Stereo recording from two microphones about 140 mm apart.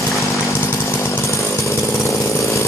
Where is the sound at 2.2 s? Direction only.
20° left (ahead or behind).